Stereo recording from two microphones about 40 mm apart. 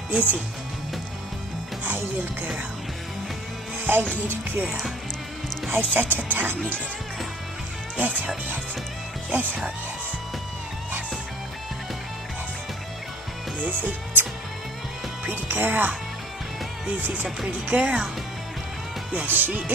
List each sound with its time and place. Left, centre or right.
0.1 s speech: right
3.8 s music: right
4.3 s speech: right
13.6 s speech: right
15.2 s speech: right
16.9 s speech: right
19.2 s speech: right